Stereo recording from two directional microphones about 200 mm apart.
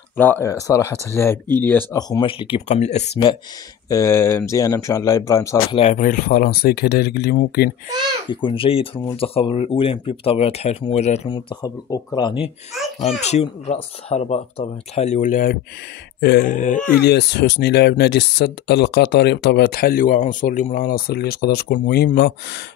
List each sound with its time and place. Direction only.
0.2 s speech: 10° left (ahead or behind); by 3.1 s 35° left (ahead or behind)
3.9 s speech: 15° left (ahead or behind)
5.8 s speech: 35° left (ahead or behind)
8.3 s speech: 25° left (ahead or behind)
12.7 s a child's voice: centre (ahead or behind)
13.2 s speech: 35° left (ahead or behind)
17.0 s speech: 55° left (ahead or behind)